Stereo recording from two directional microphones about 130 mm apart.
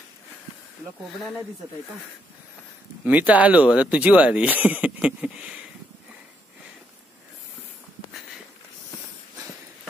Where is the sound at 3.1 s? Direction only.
10° right (ahead or behind).